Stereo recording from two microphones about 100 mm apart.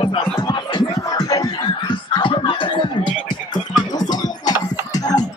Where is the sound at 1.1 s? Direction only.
40° left (ahead or behind).